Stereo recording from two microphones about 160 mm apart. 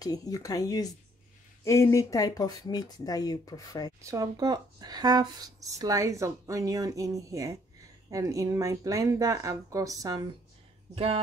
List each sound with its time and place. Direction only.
0.0 s speech: 25° left (ahead or behind)
4.0 s speech: 20° right (ahead or behind)